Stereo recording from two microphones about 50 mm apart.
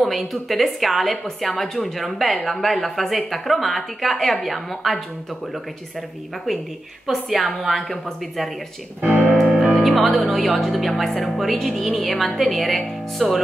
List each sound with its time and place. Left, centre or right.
0.0 s a woman's voice: centre
9.0 s speech: left
9.7 s a woman's voice: centre